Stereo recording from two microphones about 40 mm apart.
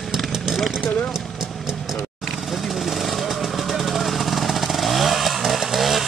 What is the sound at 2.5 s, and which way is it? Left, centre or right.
Vehicle, centre.